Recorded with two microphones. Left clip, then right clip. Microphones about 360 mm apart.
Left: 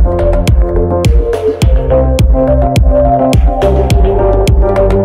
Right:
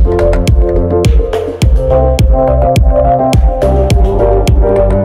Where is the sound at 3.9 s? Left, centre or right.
Centre.